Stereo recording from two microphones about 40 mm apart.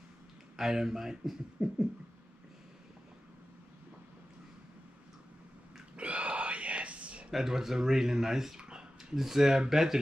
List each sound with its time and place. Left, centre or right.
0.6 s speech: centre
5.9 s whispering: right
7.2 s speech: centre
8.5 s a sound: right
9.1 s speech: centre